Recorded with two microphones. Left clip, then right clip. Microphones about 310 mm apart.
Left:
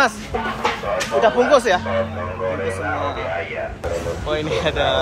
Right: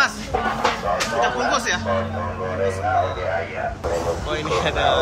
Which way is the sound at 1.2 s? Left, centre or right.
Centre.